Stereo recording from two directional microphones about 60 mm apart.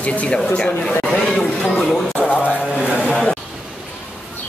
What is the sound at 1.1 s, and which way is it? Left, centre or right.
Speech, centre.